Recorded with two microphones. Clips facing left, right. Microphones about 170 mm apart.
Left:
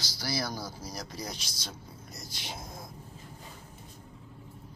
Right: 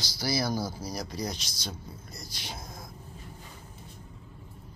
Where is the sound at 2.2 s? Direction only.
25° left (ahead or behind).